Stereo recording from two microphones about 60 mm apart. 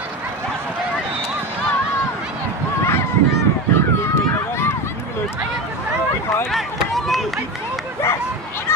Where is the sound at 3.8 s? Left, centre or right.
Left.